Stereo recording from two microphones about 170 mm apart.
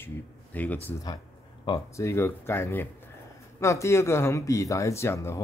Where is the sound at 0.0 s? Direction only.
10° left (ahead or behind).